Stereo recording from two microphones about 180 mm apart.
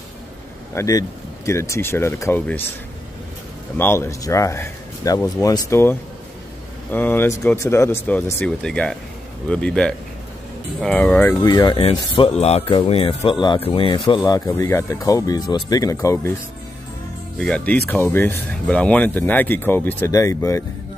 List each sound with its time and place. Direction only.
0.7 s speech: 20° left (ahead or behind)
3.7 s speech: 15° left (ahead or behind)
11.4 s speech: 20° left (ahead or behind)
17.4 s speech: 5° left (ahead or behind)